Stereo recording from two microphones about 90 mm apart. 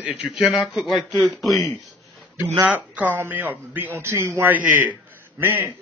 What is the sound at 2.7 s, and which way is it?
Speech, 15° right (ahead or behind).